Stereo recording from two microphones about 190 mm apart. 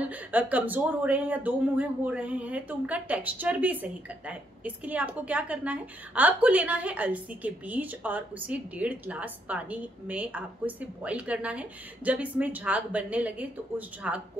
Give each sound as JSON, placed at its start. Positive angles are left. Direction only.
{"t": 0.1, "sound": "speech", "side_deg": -10}